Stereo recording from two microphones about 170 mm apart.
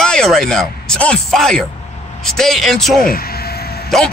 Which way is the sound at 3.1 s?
60° left (ahead or behind).